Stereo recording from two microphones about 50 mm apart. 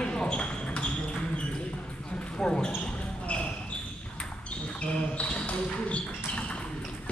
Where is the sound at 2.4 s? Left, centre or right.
Centre.